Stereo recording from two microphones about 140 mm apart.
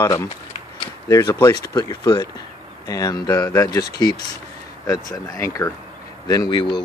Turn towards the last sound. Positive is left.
turn(degrees=35)  # may be behind; listen again after turning